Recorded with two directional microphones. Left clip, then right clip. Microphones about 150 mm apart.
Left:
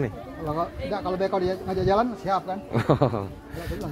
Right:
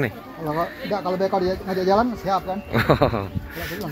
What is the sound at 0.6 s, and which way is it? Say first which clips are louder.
Speech: right 4 dB; 35° right (ahead or behind).